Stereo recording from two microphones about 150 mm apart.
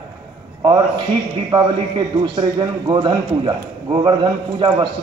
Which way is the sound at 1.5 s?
35° right (ahead or behind).